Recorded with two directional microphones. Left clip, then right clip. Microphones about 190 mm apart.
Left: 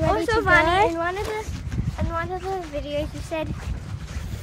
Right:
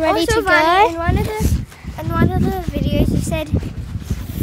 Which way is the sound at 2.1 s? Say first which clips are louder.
Right 7 dB; 65° right (ahead or behind).